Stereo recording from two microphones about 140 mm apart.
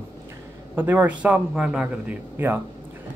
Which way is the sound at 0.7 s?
10° right (ahead or behind).